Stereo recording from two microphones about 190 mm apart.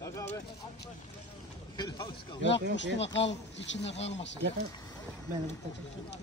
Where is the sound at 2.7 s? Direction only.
70° left (ahead or behind).